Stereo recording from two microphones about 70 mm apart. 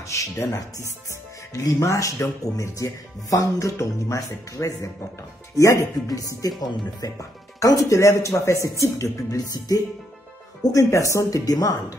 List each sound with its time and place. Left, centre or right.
0.0 s speech: left
6.0 s speech: left
6.6 s speech: left
7.2 s speech: left